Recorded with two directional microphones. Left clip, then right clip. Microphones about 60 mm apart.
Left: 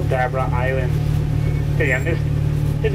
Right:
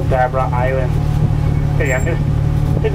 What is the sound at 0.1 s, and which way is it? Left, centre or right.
Speech, left.